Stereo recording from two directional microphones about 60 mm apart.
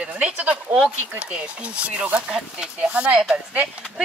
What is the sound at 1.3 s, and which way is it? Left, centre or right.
Speech, centre.